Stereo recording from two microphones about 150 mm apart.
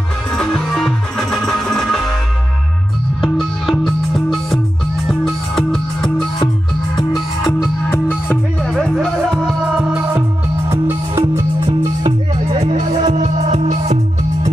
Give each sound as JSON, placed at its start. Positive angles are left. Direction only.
{"t": 0.3, "sound": "music", "side_deg": 5}
{"t": 3.2, "sound": "music", "side_deg": 5}
{"t": 7.1, "sound": "music", "side_deg": 0}
{"t": 7.9, "sound": "music", "side_deg": 10}
{"t": 12.7, "sound": "music", "side_deg": -55}